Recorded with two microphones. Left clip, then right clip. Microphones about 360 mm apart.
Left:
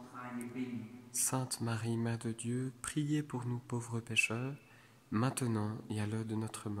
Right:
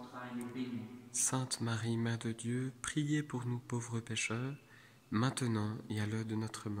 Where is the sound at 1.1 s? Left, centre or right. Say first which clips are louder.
Right 1 dB; centre.